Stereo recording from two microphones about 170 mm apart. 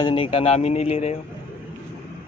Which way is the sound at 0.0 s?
30° left (ahead or behind).